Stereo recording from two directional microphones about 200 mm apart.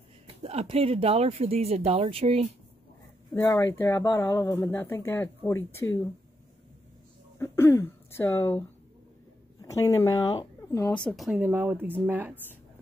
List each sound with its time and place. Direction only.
0.4 s speech: 30° right (ahead or behind)
3.3 s speech: 15° left (ahead or behind)
7.3 s speech: 10° left (ahead or behind); by 12.4 s 10° right (ahead or behind)